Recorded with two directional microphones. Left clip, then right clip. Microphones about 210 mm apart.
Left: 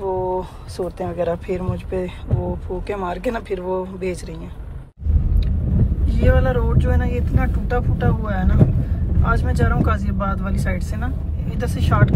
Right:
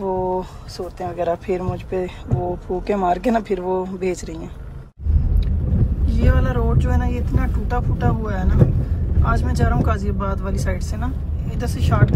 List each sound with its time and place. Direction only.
0.0 s speech: 10° right (ahead or behind)
6.1 s speech: 5° right (ahead or behind)